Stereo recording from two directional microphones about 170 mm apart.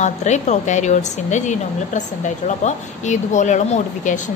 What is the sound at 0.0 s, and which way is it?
A woman's voice, 45° left (ahead or behind).